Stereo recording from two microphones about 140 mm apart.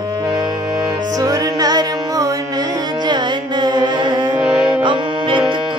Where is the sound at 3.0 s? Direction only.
30° right (ahead or behind).